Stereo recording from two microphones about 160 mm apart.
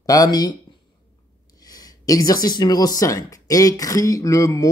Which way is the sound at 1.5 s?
25° left (ahead or behind).